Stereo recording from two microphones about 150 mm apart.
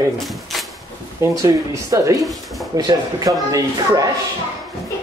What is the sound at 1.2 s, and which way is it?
Speech, 20° right (ahead or behind).